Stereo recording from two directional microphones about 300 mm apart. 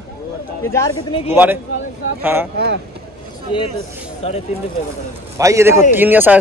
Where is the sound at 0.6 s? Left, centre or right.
Centre.